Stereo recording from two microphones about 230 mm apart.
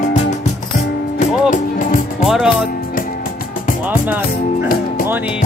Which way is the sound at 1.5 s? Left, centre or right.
Left.